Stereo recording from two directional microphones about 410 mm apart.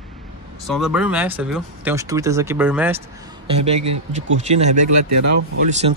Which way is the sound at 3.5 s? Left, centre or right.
Centre.